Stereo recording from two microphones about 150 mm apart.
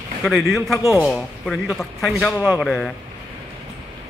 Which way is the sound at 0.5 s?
Centre (ahead or behind).